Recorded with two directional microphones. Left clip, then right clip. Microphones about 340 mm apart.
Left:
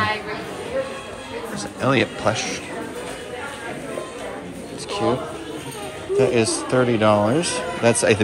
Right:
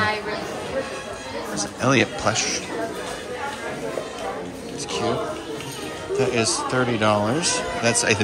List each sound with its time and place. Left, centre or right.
1.6 s speech: centre
6.1 s a man's voice: centre